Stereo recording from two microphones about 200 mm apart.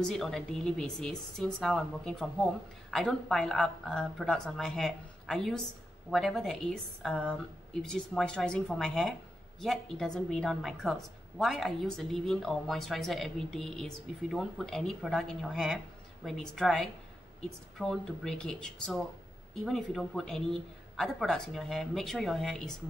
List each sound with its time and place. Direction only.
0.0 s speech: centre (ahead or behind)